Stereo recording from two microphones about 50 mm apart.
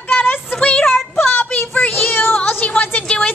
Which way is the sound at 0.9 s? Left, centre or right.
Left.